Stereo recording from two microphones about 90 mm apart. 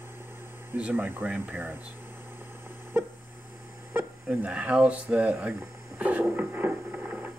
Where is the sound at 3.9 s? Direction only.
15° right (ahead or behind).